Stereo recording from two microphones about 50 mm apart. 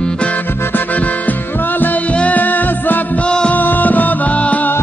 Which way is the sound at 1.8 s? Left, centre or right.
Left.